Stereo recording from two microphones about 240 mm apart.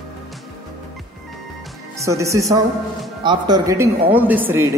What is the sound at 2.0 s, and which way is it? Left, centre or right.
Speech, centre.